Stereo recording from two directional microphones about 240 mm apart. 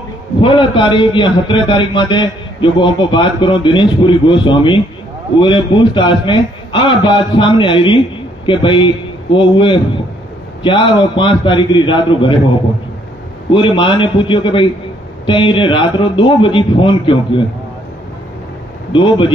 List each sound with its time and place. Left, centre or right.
0.4 s a man's voice: left
13.5 s a man's voice: left
18.9 s a man's voice: left